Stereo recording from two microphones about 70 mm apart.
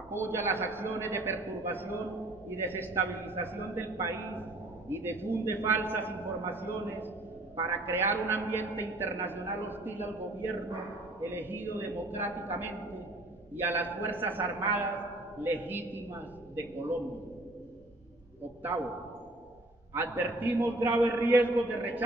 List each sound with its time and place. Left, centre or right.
0.1 s a man's voice: right
19.9 s a man's voice: right